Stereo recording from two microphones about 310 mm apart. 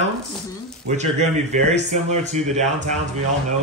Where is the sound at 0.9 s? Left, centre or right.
Right.